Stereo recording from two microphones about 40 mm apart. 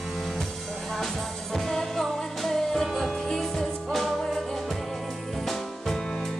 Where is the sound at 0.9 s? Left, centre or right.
Centre.